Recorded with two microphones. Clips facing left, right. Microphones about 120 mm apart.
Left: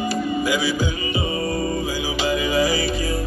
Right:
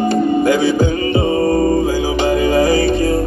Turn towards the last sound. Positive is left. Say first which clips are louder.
# right 8 dB
turn(degrees=-55)  # may be behind; listen again after turning